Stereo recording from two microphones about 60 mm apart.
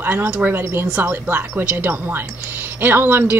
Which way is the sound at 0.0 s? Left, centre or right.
Right.